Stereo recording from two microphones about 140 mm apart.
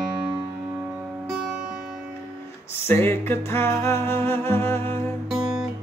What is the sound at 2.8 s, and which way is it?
Music, 15° left (ahead or behind).